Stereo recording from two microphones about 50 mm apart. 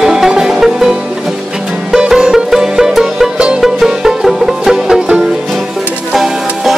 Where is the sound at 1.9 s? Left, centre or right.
Centre.